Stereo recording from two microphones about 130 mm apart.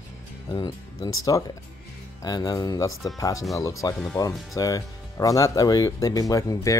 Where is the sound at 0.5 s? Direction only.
35° left (ahead or behind).